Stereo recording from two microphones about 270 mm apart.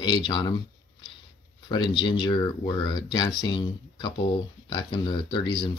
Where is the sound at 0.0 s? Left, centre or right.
Centre.